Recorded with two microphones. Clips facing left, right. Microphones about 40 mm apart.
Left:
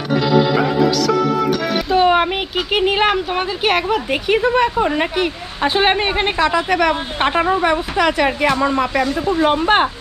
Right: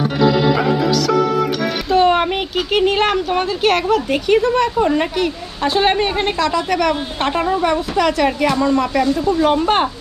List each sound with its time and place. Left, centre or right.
0.6 s music: centre